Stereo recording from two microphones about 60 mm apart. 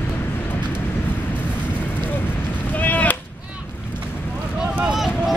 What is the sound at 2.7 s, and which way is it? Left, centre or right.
Artillery fire, left.